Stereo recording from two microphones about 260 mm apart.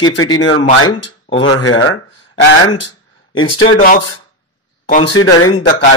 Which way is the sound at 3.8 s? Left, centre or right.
Left.